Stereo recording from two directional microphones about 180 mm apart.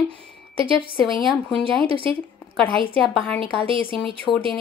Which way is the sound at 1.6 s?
30° right (ahead or behind).